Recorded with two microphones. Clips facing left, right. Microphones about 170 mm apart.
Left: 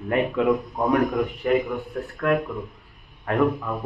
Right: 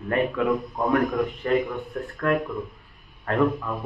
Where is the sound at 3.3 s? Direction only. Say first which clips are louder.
Left 1 dB; 15° left (ahead or behind).